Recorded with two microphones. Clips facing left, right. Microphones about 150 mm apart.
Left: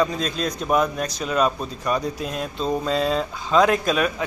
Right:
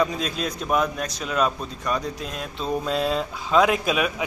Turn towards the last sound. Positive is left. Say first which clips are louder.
# left 2 dB
turn(degrees=-5)  # may be behind; listen again after turning